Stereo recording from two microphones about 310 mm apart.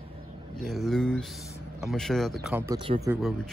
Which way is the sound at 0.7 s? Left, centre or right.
Centre.